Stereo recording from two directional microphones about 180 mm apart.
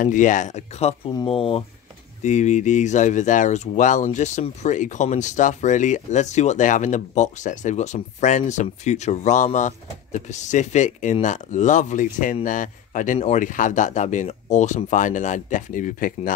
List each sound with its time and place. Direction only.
0.0 s speech: 45° left (ahead or behind)